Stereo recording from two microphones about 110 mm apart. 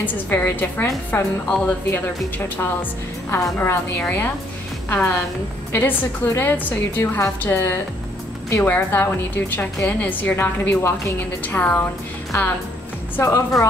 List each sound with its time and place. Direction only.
0.0 s a woman's voice: 20° left (ahead or behind)